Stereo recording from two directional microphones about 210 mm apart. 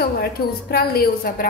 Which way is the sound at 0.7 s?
45° left (ahead or behind).